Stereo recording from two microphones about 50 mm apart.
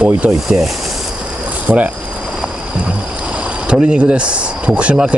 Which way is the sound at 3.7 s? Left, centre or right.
Centre.